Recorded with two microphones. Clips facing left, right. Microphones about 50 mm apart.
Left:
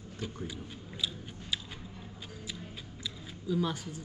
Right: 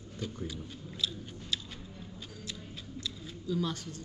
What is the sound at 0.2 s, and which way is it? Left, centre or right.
Chewing, centre.